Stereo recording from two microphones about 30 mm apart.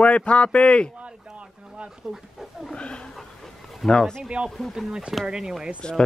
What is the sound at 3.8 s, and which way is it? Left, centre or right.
Speech, centre.